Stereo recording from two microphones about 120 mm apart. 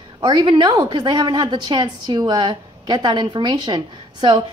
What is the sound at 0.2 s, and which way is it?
A woman's voice, 35° right (ahead or behind).